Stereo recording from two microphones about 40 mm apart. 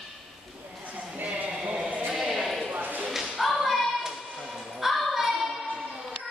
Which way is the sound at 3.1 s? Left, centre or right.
Centre.